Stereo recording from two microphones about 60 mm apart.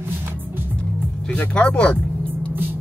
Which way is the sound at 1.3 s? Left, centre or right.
Left.